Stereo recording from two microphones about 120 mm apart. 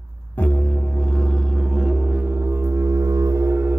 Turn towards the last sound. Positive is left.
turn(degrees=-20)  # may be behind; listen again after turning